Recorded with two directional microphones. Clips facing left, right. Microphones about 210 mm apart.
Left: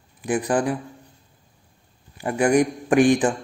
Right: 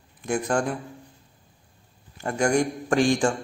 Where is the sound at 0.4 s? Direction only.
15° left (ahead or behind).